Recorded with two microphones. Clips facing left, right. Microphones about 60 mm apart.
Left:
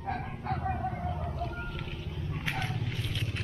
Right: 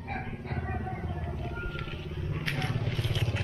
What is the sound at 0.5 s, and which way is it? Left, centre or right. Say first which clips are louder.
Music: left 3 dB; right.